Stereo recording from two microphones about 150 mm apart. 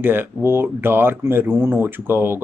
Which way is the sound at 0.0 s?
15° right (ahead or behind).